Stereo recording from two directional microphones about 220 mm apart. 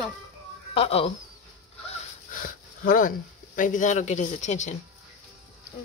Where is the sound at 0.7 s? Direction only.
25° left (ahead or behind).